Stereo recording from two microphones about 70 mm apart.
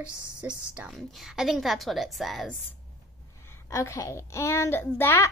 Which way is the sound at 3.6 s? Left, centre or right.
Left.